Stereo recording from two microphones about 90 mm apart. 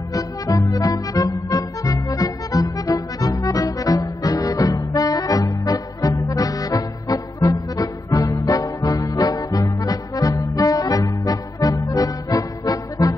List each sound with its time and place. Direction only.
0.1 s music: 40° left (ahead or behind)